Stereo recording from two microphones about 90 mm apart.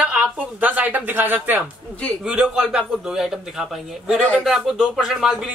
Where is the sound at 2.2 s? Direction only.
10° right (ahead or behind).